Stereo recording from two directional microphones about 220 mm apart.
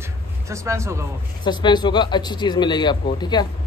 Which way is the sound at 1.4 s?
20° left (ahead or behind).